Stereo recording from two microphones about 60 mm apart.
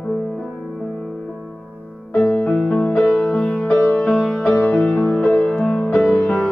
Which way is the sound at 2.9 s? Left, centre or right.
Left.